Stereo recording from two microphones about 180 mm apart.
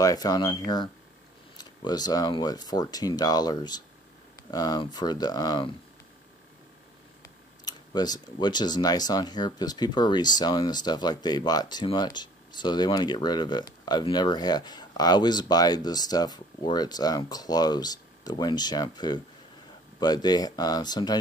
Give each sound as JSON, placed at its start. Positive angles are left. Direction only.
{"t": 0.0, "sound": "speech", "side_deg": 20}
{"t": 7.6, "sound": "speech", "side_deg": 20}